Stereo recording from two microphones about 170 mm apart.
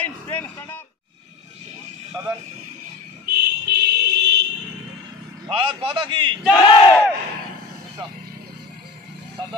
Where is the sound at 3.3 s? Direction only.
70° right (ahead or behind).